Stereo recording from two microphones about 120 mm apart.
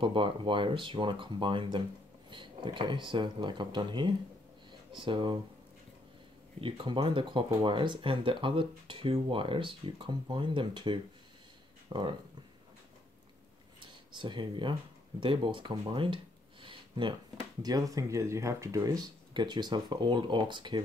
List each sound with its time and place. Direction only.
0.0 s speech: 45° right (ahead or behind)
6.6 s speech: 45° right (ahead or behind)
14.1 s speech: 40° right (ahead or behind)
16.6 s a sound: 45° right (ahead or behind)
17.6 s speech: 30° right (ahead or behind)